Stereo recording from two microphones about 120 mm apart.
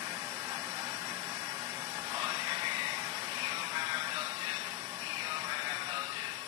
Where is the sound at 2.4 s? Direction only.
50° right (ahead or behind).